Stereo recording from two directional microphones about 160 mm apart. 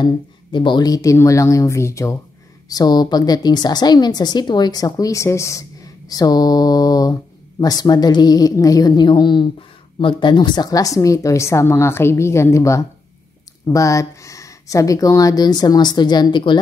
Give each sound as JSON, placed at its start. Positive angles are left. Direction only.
{"t": 0.0, "sound": "a woman's voice", "side_deg": 30}